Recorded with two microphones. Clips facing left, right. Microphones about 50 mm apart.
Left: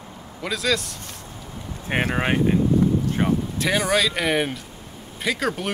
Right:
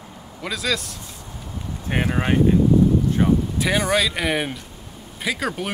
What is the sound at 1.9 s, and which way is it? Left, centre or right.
Speech, left.